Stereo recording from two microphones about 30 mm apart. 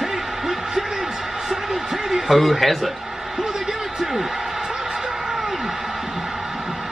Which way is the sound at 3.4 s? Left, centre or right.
Centre.